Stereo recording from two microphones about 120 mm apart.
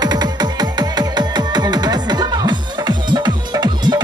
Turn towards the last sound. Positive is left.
turn(degrees=-35)  # may be behind; listen again after turning